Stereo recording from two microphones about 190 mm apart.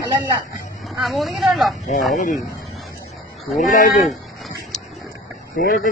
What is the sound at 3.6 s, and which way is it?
Speech, 40° left (ahead or behind).